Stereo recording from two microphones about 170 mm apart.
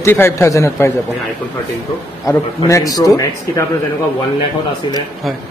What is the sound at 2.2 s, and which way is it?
A man's voice, 20° left (ahead or behind).